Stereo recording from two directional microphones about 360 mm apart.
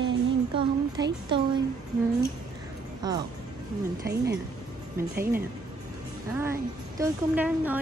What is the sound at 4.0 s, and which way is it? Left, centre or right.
Speech, right.